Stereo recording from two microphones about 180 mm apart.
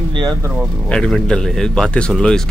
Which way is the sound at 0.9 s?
5° left (ahead or behind).